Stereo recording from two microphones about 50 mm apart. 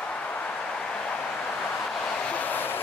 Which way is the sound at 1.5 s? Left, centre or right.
Left.